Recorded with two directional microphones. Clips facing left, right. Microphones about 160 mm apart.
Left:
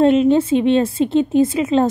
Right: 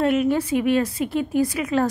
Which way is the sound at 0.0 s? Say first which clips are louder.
Left 7 dB; 25° left (ahead or behind).